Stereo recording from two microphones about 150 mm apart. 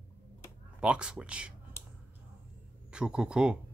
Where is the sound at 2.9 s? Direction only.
5° right (ahead or behind).